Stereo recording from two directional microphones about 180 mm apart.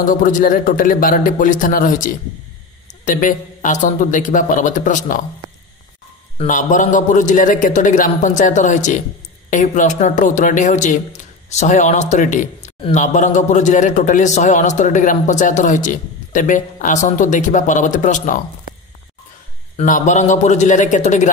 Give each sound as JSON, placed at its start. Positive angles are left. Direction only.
{"t": 0.0, "sound": "a man's voice", "side_deg": 50}
{"t": 6.3, "sound": "a man's voice", "side_deg": 45}
{"t": 19.8, "sound": "a man's voice", "side_deg": 45}